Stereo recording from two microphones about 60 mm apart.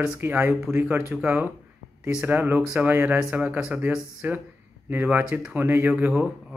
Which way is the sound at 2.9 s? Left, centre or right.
Right.